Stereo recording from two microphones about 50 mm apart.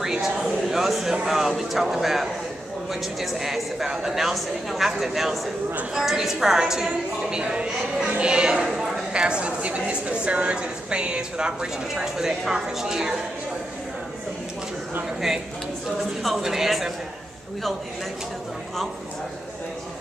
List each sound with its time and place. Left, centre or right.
0.0 s a sound: centre
1.2 s a woman's voice: centre
16.2 s speech: centre